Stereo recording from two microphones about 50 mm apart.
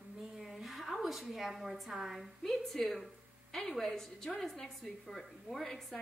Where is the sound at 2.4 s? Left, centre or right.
Centre.